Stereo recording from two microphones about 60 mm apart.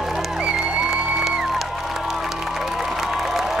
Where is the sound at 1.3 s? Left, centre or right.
Centre.